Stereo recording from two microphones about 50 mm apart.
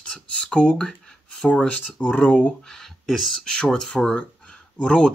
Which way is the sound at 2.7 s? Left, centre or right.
Centre.